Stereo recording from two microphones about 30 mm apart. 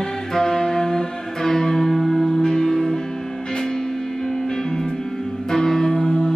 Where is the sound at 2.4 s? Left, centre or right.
Left.